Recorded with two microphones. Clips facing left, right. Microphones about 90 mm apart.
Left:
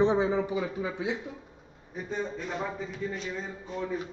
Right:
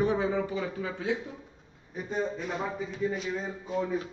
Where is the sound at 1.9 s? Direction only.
5° right (ahead or behind).